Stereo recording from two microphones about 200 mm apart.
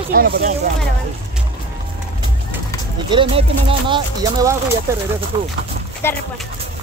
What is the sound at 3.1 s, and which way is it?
Speech, 25° right (ahead or behind).